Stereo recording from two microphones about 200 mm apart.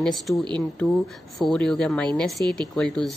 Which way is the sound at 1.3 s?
Centre (ahead or behind).